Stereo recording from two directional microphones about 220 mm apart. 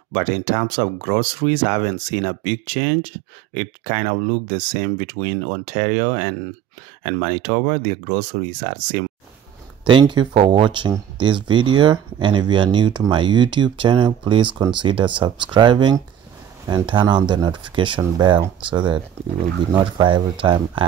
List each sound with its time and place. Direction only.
0.1 s speech: 40° right (ahead or behind)
9.8 s speech: 20° right (ahead or behind)